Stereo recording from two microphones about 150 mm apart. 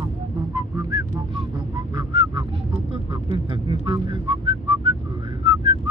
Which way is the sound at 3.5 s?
30° right (ahead or behind).